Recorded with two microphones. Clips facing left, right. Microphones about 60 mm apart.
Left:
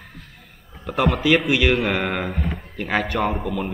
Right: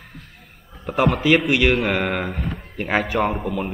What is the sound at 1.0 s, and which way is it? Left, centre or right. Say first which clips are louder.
A man's voice: right 1 dB; centre.